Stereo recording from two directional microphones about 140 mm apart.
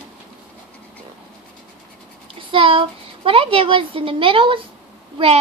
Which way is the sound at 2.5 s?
40° right (ahead or behind).